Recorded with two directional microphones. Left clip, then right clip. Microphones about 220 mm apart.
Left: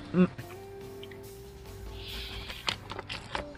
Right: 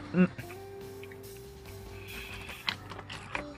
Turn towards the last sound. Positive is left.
turn(degrees=40)  # may be behind; listen again after turning